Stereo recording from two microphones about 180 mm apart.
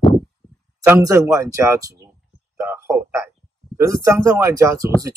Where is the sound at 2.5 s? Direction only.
15° right (ahead or behind).